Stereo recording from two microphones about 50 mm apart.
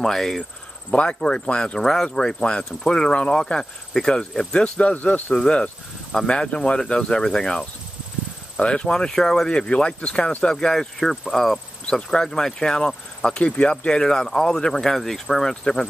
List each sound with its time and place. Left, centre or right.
0.0 s speech: centre
0.9 s speech: centre
4.9 s cricket: left
5.3 s speech: centre